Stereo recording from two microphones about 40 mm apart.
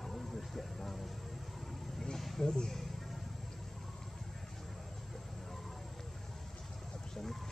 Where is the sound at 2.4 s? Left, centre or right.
Centre.